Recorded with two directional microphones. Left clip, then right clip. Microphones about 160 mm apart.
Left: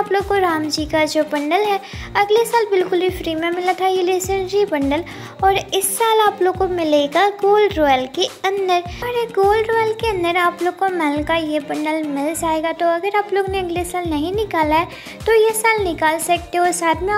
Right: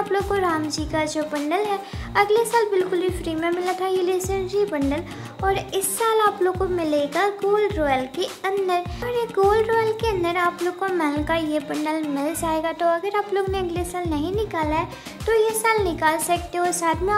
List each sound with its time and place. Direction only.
0.3 s speech: 20° left (ahead or behind)